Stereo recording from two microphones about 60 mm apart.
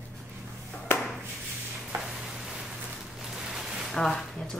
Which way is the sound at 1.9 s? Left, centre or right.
Right.